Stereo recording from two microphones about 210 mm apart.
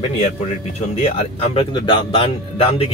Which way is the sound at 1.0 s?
30° left (ahead or behind).